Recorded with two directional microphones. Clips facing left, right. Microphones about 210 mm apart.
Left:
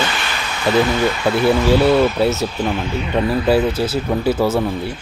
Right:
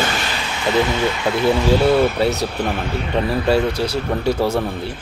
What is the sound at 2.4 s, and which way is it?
Speech, 60° right (ahead or behind).